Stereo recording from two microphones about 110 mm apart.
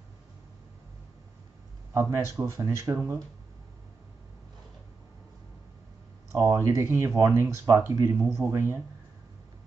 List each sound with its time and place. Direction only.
2.0 s speech: 25° right (ahead or behind)
6.3 s speech: 30° right (ahead or behind)